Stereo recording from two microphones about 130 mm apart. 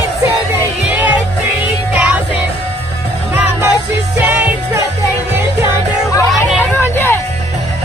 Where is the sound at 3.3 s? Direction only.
15° right (ahead or behind).